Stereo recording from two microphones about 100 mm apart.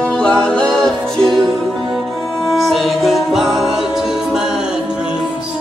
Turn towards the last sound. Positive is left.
turn(degrees=-10)  # may be behind; listen again after turning